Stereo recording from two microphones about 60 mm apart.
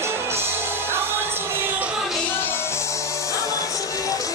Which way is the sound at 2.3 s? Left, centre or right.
Left.